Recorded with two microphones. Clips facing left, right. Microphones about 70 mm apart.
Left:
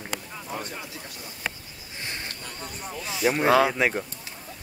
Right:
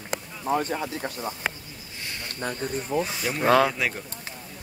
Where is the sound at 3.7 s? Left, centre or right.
Left.